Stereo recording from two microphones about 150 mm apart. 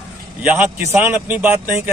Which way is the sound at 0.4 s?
10° right (ahead or behind).